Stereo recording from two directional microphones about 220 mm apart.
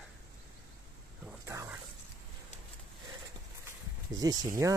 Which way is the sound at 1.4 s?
10° right (ahead or behind).